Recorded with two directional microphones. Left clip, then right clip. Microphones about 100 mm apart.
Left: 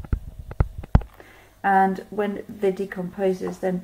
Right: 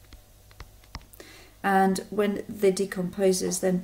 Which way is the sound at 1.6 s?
30° right (ahead or behind).